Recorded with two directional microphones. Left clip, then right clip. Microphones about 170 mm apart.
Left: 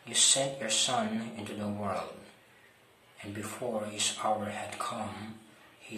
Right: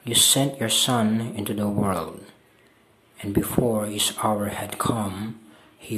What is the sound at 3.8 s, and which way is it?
Speech, 45° right (ahead or behind).